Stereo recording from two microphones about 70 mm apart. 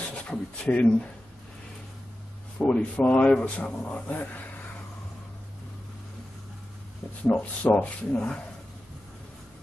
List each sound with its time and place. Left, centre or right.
0.1 s speech: centre
2.6 s speech: left
7.2 s speech: left